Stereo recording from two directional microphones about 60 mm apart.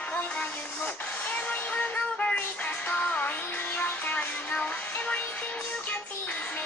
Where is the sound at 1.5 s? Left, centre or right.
Left.